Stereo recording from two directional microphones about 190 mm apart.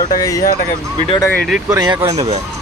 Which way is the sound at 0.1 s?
20° left (ahead or behind).